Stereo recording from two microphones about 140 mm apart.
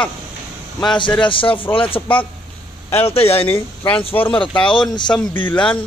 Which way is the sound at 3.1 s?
45° left (ahead or behind).